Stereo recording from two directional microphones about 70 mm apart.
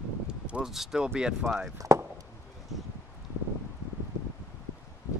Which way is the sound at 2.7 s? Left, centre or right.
Centre.